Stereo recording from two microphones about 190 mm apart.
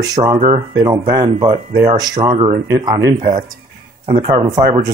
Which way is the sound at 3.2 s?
20° right (ahead or behind).